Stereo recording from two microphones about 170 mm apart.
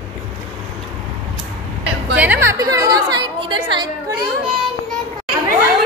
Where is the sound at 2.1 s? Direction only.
10° right (ahead or behind).